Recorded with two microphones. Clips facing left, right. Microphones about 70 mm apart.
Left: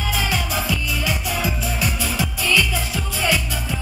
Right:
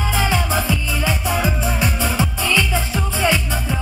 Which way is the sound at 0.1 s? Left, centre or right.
Right.